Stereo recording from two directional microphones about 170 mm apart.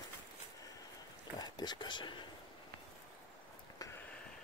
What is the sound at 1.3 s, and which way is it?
Speech, 25° left (ahead or behind).